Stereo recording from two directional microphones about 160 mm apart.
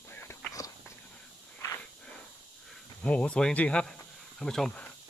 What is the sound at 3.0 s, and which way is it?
Speech, 5° left (ahead or behind).